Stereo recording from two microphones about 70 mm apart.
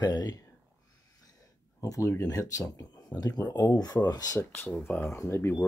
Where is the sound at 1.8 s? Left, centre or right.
Left.